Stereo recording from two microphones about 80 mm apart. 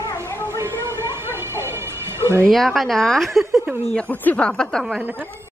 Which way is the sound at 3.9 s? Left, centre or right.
Centre.